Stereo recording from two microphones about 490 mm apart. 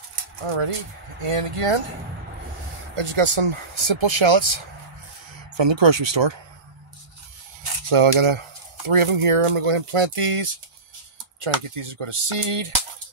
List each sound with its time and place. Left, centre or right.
0.5 s speech: right
3.0 s speech: right
7.9 s speech: right